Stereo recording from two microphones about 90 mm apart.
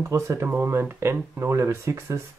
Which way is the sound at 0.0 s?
30° right (ahead or behind).